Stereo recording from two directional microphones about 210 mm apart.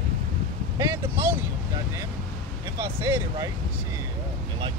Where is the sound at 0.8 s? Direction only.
15° right (ahead or behind).